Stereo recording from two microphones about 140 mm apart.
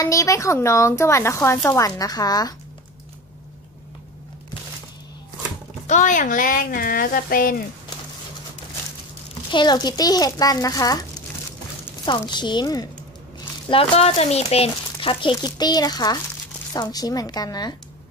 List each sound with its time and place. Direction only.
0.0 s speech: 25° left (ahead or behind)
5.9 s speech: 65° left (ahead or behind); by 7.6 s 90° left
9.5 s speech: 30° left (ahead or behind)
12.1 s speech: 35° left (ahead or behind)
13.7 s speech: 45° left (ahead or behind); by 17.7 s 30° left (ahead or behind)